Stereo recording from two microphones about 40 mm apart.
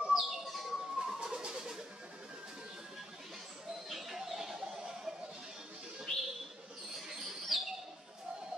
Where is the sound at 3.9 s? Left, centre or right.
Centre.